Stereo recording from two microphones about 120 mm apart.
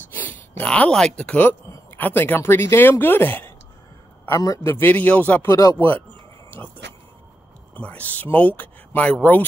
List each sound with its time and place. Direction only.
0.1 s a man's voice: 15° left (ahead or behind)
7.7 s speech: 10° left (ahead or behind)